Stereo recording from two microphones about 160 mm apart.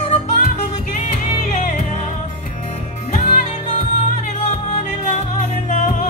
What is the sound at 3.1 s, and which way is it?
Music, 45° left (ahead or behind).